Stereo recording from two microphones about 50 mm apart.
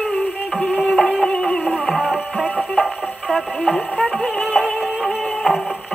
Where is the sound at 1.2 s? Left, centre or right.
Centre.